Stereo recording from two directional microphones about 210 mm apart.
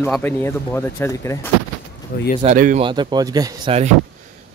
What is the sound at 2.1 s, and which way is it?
Speech, 45° left (ahead or behind).